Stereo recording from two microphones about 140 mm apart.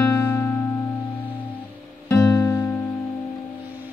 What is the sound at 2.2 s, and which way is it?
Music, 10° left (ahead or behind).